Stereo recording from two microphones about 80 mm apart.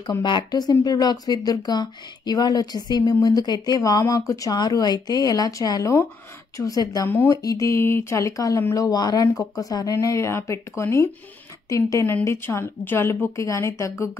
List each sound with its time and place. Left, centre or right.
0.2 s speech: left
7.1 s speech: left
7.4 s speech: left
12.3 s speech: left